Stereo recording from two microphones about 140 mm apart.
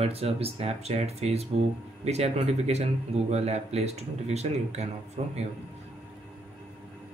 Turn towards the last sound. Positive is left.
turn(degrees=-50)  # may be behind; listen again after turning